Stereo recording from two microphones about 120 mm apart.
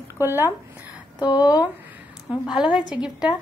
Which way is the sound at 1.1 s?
35° left (ahead or behind).